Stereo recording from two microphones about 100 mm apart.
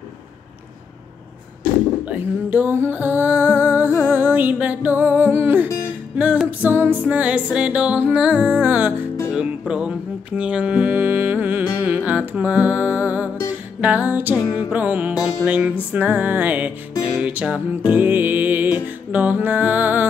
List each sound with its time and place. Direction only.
2.0 s music: 20° right (ahead or behind)